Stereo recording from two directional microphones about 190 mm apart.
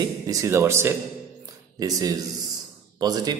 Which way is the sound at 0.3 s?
15° right (ahead or behind).